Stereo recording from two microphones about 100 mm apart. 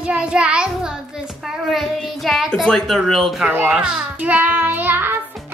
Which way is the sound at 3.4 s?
15° right (ahead or behind).